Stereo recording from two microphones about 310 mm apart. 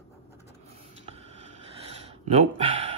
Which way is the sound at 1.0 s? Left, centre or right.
Centre.